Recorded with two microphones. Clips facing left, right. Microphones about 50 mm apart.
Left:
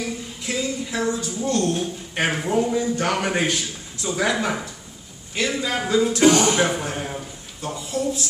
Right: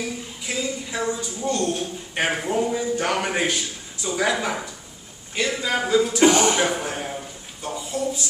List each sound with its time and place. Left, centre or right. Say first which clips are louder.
0.4 s a woman's voice: left 2 dB; centre
6.2 s speech: left 1 dB; right
6.6 s speech: left 1 dB; centre